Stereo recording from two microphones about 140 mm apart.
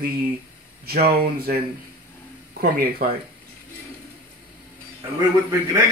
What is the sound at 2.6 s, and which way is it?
Speech, 90° right.